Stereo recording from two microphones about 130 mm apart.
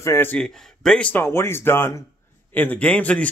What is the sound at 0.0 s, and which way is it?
Speech, 20° left (ahead or behind).